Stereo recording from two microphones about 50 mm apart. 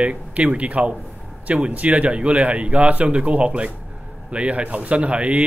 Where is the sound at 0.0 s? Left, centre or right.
Right.